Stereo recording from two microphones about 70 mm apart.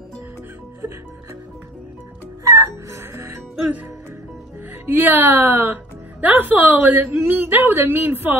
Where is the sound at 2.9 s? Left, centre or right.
Right.